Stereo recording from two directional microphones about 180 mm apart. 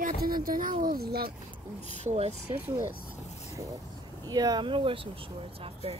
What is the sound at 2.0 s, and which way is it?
Speech, 35° right (ahead or behind).